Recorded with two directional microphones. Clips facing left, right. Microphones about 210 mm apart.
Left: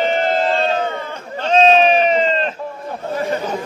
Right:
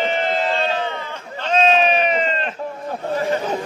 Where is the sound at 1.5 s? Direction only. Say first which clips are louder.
Left 4 dB; 30° left (ahead or behind).